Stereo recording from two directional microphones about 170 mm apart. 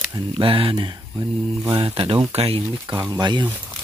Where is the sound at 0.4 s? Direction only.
30° right (ahead or behind).